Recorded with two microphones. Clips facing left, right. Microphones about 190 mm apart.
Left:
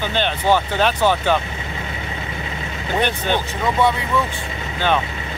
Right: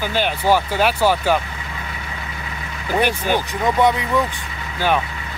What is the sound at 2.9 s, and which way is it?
Speech, 10° right (ahead or behind).